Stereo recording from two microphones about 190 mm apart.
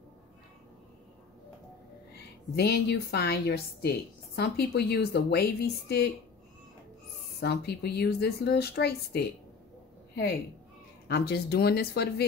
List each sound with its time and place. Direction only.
2.1 s a woman's voice: 60° left (ahead or behind)
7.3 s a woman's voice: 60° left (ahead or behind)
11.1 s a woman's voice: 55° left (ahead or behind)